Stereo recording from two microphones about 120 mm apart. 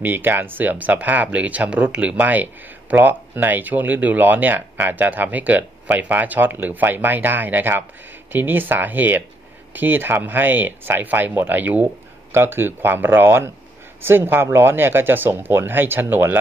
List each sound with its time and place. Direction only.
0.0 s speech: 15° right (ahead or behind)